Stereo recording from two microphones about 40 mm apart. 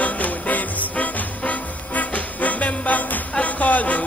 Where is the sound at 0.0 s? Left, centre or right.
Left.